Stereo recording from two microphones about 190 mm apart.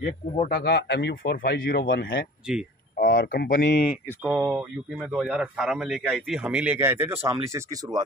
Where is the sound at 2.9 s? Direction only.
50° left (ahead or behind).